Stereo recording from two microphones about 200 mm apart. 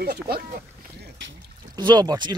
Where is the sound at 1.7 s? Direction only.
20° right (ahead or behind).